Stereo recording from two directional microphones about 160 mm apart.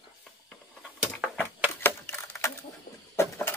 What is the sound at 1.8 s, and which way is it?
Typewriter, 15° left (ahead or behind).